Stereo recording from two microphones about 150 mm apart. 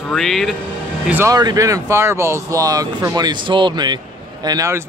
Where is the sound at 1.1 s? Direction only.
15° right (ahead or behind).